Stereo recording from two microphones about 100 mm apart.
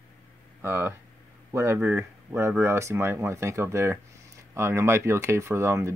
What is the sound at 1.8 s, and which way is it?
Speech, 15° right (ahead or behind).